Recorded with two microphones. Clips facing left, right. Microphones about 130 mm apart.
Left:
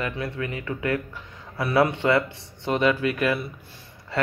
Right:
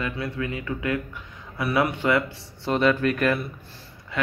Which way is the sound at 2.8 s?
15° left (ahead or behind).